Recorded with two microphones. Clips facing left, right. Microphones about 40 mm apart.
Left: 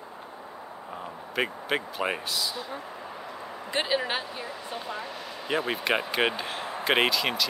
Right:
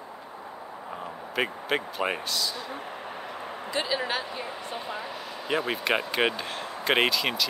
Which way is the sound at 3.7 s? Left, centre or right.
Left.